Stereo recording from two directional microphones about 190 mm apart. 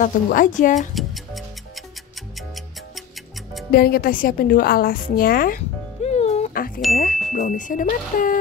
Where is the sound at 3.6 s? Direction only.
55° left (ahead or behind).